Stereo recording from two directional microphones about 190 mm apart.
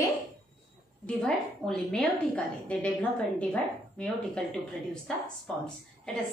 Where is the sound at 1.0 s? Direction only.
5° left (ahead or behind).